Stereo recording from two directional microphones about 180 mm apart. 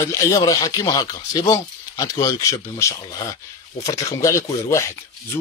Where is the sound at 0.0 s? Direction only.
15° left (ahead or behind).